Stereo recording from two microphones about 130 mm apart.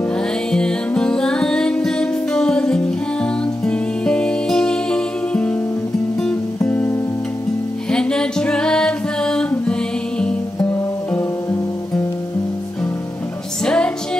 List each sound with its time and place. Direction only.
0.5 s music: 5° left (ahead or behind)
6.7 s music: 15° left (ahead or behind)
13.7 s music: 5° left (ahead or behind)